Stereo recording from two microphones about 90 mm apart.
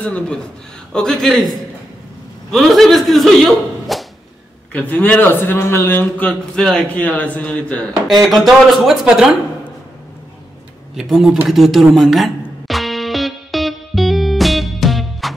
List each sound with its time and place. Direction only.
0.0 s a man's voice: 15° left (ahead or behind)
2.5 s speech: centre (ahead or behind)
4.7 s speech: 20° left (ahead or behind)
6.5 s speech: 5° left (ahead or behind)
6.9 s a man's voice: 15° left (ahead or behind)
8.2 s a woman's voice: centre (ahead or behind)
11.0 s speech: 5° right (ahead or behind)
11.4 s music: centre (ahead or behind)